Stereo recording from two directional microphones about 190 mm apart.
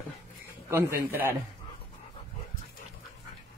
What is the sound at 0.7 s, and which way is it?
Speech, 15° right (ahead or behind).